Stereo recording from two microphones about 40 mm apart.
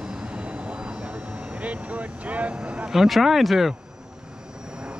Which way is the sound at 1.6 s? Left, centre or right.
Right.